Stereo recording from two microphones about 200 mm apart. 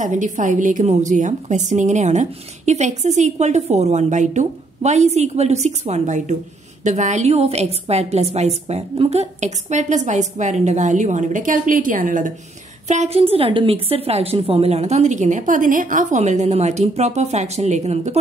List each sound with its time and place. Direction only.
0.0 s a woman's voice: 40° right (ahead or behind)